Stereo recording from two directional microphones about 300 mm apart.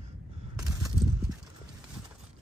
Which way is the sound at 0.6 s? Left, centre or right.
Centre.